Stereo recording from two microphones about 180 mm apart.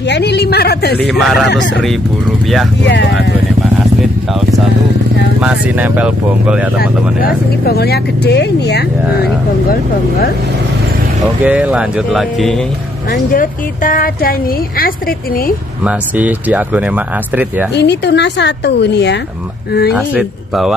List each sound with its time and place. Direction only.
0.0 s a woman's voice: 70° left (ahead or behind)
0.9 s speech: centre (ahead or behind)
2.8 s a woman's voice: 75° left (ahead or behind)
5.4 s speech: 5° right (ahead or behind)
6.8 s speech: 55° left (ahead or behind)
11.4 s speech: 5° right (ahead or behind)
13.1 s speech: 50° left (ahead or behind)
15.8 s speech: 5° right (ahead or behind)
17.7 s a woman's voice: 70° left (ahead or behind)
19.9 s speech: 5° right (ahead or behind)